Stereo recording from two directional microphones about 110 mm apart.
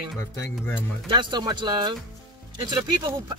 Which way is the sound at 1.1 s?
45° right (ahead or behind).